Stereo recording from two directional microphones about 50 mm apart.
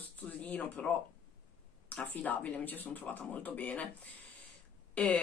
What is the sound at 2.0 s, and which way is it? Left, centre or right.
Speech, left.